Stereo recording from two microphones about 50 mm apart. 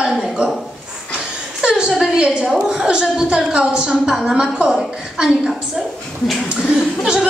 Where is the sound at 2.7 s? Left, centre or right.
Centre.